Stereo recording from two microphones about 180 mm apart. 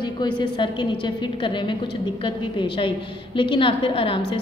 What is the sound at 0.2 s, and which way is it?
A woman's voice, 25° left (ahead or behind).